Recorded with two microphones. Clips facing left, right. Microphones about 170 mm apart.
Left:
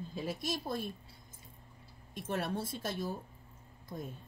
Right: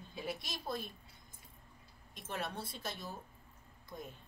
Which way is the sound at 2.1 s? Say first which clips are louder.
Left 6 dB; 50° left (ahead or behind).